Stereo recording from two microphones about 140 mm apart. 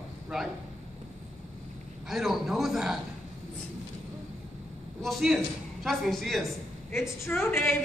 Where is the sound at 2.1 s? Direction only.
Centre (ahead or behind).